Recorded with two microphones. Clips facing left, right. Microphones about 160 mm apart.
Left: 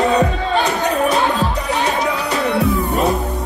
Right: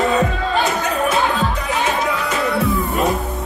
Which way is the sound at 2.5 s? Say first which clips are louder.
Left 2 dB; centre (ahead or behind).